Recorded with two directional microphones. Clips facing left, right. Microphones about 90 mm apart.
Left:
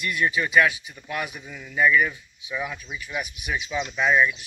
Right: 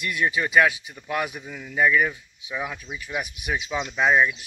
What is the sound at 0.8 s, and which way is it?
Speech, 30° right (ahead or behind).